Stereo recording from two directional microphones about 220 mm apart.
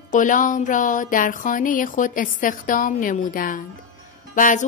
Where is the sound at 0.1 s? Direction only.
35° left (ahead or behind).